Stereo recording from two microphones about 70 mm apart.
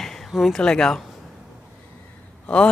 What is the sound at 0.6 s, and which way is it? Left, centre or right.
Speech, centre.